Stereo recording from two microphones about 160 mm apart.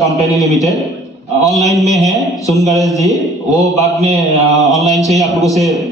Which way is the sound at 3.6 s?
20° left (ahead or behind).